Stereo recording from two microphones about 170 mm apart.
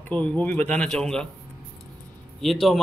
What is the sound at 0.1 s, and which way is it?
Speech, 10° left (ahead or behind).